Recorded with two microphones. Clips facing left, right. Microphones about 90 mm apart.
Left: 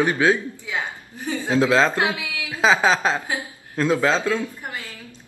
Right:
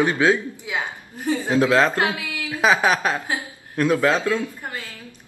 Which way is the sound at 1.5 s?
20° left (ahead or behind).